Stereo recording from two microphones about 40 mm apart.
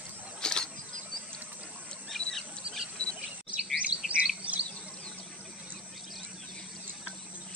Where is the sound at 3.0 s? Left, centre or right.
Left.